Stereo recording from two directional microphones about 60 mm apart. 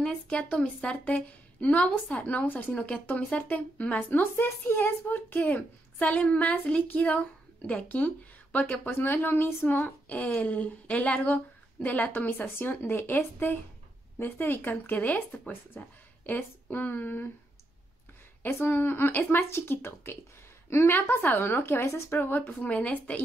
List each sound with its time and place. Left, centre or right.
0.0 s a woman's voice: centre
2.7 s a woman's voice: centre
4.2 s a woman's voice: left
8.9 s a woman's voice: left
18.4 s a woman's voice: left
21.8 s speech: left
22.5 s a woman's voice: left